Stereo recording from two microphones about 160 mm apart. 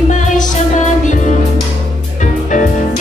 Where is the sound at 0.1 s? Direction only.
50° left (ahead or behind).